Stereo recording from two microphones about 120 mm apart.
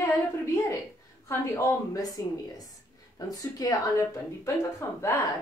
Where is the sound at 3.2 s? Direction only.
30° left (ahead or behind).